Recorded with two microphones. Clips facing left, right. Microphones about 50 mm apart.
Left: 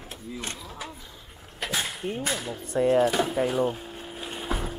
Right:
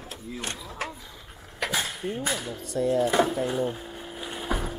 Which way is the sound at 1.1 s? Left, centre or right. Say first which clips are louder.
Right 2 dB; right.